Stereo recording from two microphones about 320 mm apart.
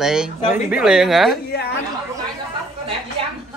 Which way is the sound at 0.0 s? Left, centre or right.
Centre.